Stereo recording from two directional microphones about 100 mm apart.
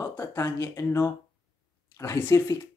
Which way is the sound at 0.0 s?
25° left (ahead or behind).